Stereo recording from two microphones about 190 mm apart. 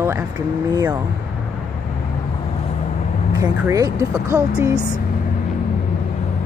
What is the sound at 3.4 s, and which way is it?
Speech, 15° right (ahead or behind).